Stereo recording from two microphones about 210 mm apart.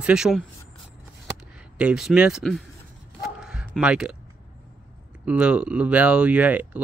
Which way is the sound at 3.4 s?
Centre (ahead or behind).